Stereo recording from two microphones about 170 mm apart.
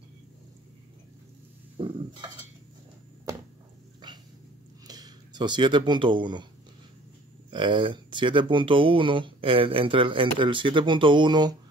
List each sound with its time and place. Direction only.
1.8 s a sound: 30° right (ahead or behind)
4.8 s speech: 25° right (ahead or behind)
7.5 s speech: 30° right (ahead or behind)